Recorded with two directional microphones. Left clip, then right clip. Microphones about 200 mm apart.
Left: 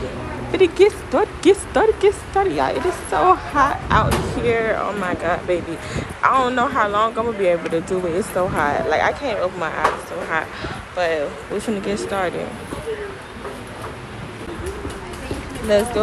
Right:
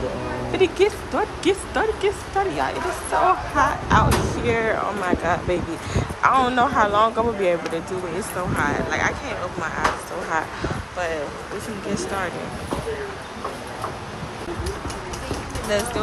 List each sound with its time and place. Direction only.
0.5 s speech: 15° right (ahead or behind)
8.5 s speech: 5° right (ahead or behind)
15.7 s speech: 5° right (ahead or behind)